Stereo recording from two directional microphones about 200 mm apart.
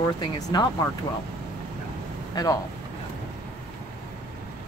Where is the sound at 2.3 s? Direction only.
15° left (ahead or behind).